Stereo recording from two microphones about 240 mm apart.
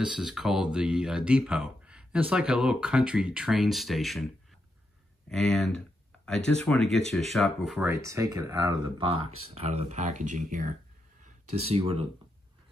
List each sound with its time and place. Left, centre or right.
0.0 s speech: centre
5.3 s speech: centre; by 10.7 s right
11.7 s speech: right